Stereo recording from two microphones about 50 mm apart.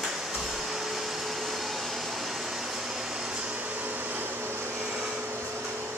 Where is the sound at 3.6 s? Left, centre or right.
Right.